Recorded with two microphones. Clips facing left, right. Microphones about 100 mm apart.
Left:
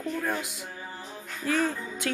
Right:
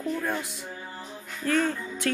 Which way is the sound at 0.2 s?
15° left (ahead or behind).